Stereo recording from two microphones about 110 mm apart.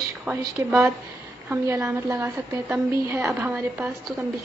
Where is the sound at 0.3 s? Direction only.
15° right (ahead or behind).